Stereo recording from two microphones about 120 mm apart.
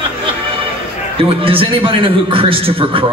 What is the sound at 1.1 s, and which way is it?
A man's voice, 50° right (ahead or behind).